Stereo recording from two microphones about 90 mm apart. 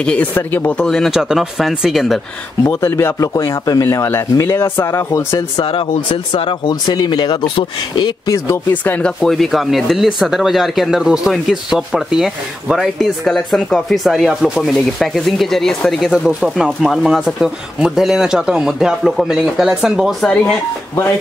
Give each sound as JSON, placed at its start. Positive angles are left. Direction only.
{"t": 0.0, "sound": "speech", "side_deg": 10}
{"t": 0.8, "sound": "speech", "side_deg": 5}
{"t": 1.1, "sound": "speech", "side_deg": -5}
{"t": 2.6, "sound": "speech", "side_deg": 30}
{"t": 6.3, "sound": "speech", "side_deg": 60}
{"t": 8.3, "sound": "speech", "side_deg": 30}
{"t": 8.8, "sound": "speech", "side_deg": 10}
{"t": 16.1, "sound": "speech", "side_deg": -10}
{"t": 20.2, "sound": "speech", "side_deg": 10}